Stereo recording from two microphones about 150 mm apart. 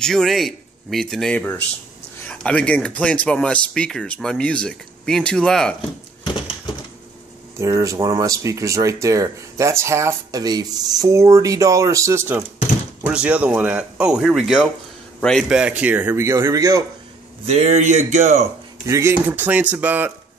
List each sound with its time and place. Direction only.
0.0 s speech: 5° left (ahead or behind)
6.2 s a sound: 30° left (ahead or behind)
7.5 s speech: 20° right (ahead or behind)
17.5 s speech: 45° right (ahead or behind)
18.9 s speech: 15° right (ahead or behind)